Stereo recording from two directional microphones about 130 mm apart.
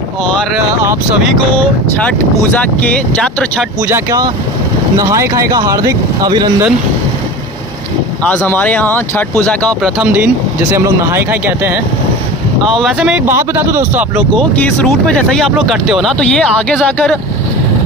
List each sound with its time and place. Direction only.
3.2 s speech: 5° left (ahead or behind)
3.8 s speech: 15° right (ahead or behind)
8.3 s speech: 10° left (ahead or behind)
10.0 s speech: 10° right (ahead or behind)
12.8 s speech: 5° right (ahead or behind)
13.4 s speech: 20° right (ahead or behind)
15.5 s speech: 5° right (ahead or behind)